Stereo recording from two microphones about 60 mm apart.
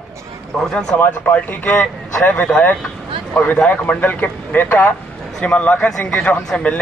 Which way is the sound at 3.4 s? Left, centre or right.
Left.